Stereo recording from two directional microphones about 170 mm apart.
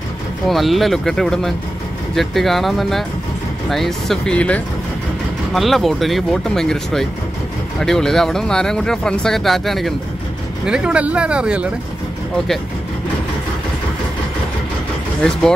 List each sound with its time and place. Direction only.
0.5 s speech: centre (ahead or behind)